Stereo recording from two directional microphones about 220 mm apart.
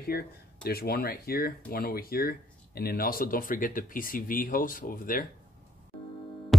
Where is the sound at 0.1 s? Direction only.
45° left (ahead or behind).